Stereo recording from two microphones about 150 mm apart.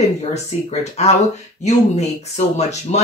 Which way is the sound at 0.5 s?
40° left (ahead or behind).